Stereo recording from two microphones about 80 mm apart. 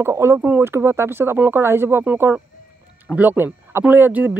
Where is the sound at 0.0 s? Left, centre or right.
Right.